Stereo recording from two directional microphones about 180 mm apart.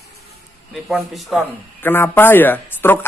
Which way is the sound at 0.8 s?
Centre (ahead or behind).